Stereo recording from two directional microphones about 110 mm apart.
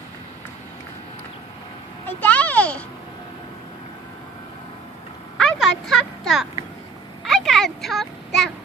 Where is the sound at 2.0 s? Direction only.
15° left (ahead or behind).